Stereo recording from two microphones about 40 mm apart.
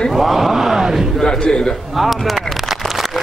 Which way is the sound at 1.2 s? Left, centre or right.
Centre.